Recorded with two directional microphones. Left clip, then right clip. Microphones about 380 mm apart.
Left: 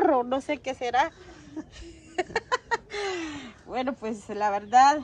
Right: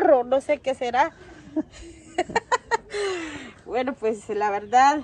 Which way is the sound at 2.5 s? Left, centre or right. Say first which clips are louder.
Right 4 dB; left.